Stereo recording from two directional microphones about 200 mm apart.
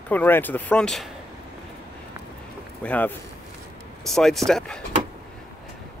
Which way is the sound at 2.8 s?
5° left (ahead or behind).